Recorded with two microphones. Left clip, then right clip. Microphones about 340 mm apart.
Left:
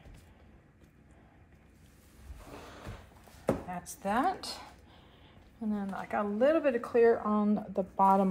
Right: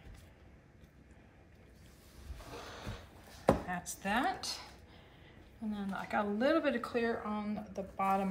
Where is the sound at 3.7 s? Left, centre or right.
Centre.